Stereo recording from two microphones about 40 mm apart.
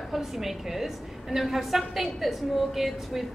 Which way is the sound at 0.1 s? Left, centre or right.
Centre.